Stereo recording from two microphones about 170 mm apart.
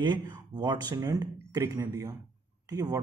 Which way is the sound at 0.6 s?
25° right (ahead or behind).